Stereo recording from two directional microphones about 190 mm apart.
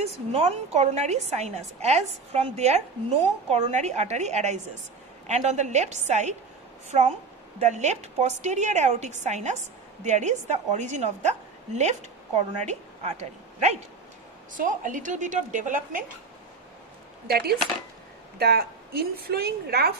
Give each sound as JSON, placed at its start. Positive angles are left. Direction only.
{"t": 0.0, "sound": "a woman's voice", "side_deg": -35}
{"t": 7.6, "sound": "a woman's voice", "side_deg": -40}
{"t": 17.3, "sound": "a woman's voice", "side_deg": -55}